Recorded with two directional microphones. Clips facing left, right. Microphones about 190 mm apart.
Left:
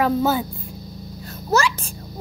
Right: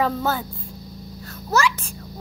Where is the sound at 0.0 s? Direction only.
10° left (ahead or behind).